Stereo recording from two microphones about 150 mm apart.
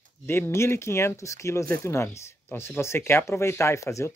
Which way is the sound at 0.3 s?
15° left (ahead or behind).